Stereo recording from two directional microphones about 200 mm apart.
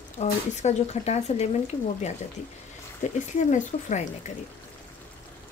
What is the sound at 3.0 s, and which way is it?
Speech, 40° left (ahead or behind).